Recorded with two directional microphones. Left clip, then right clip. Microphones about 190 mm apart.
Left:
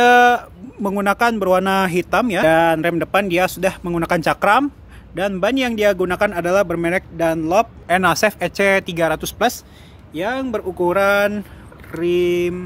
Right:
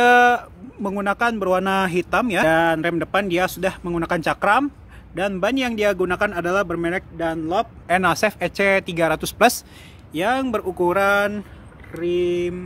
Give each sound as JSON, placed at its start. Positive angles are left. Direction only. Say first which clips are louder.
{"t": 0.0, "sound": "speech", "louder": "left 2 dB", "side_deg": 0}
{"t": 7.9, "sound": "speech", "louder": "left 2 dB", "side_deg": 0}
{"t": 10.1, "sound": "speech", "louder": "right 1 dB", "side_deg": -20}
{"t": 10.9, "sound": "speech", "louder": "left 3 dB", "side_deg": 0}
{"t": 11.9, "sound": "speech", "louder": "left 4 dB", "side_deg": 25}